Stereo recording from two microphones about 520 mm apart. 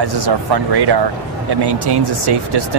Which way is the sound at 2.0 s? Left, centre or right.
Right.